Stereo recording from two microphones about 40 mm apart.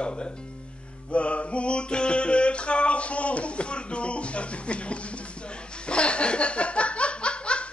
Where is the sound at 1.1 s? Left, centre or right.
Left.